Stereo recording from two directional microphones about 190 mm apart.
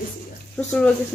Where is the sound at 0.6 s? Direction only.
15° left (ahead or behind).